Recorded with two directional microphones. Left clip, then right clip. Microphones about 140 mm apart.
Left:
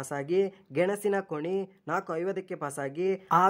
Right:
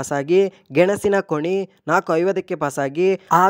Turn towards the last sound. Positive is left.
turn(degrees=-65)  # may be behind; listen again after turning